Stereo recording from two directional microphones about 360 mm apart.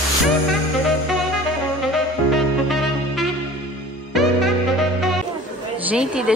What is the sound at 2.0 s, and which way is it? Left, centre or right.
Saxophone, centre.